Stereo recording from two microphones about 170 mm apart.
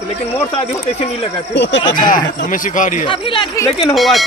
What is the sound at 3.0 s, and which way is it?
Speech, 30° left (ahead or behind).